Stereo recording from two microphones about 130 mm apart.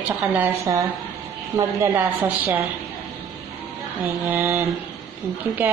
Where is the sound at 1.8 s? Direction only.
15° right (ahead or behind).